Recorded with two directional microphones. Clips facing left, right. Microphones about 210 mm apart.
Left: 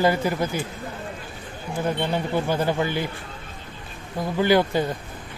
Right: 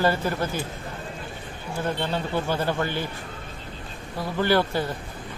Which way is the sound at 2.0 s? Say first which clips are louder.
Left 3 dB; 15° left (ahead or behind).